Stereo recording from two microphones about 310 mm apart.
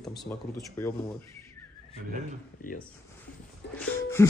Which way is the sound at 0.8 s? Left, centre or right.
Centre.